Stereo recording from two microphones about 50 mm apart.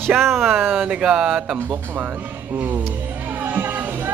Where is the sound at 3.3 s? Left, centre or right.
Right.